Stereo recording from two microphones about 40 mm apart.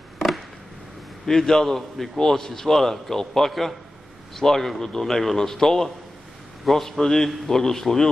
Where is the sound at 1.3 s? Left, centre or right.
Centre.